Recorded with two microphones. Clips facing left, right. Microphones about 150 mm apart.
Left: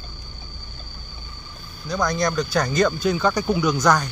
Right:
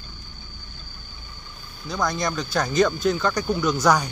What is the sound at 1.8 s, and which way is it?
Speech, centre (ahead or behind).